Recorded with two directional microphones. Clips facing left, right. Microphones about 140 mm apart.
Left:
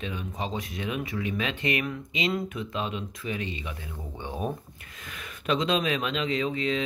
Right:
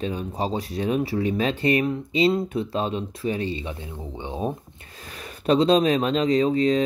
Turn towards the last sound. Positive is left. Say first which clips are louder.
# right 8 dB
turn(degrees=-40)  # may be behind; listen again after turning